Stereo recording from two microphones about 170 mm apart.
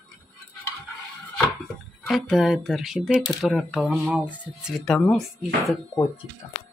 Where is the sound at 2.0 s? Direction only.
Centre (ahead or behind).